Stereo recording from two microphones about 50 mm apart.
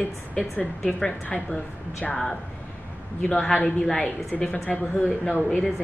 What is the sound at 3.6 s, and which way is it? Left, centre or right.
A woman's voice, centre.